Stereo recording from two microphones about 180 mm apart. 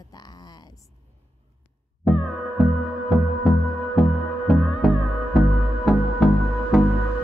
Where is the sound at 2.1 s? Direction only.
Centre (ahead or behind).